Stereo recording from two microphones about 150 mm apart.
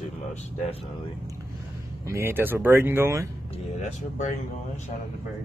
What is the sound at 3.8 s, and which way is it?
Speech, 50° left (ahead or behind).